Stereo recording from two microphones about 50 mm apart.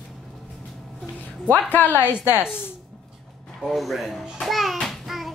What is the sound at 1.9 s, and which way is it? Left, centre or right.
Speech, right.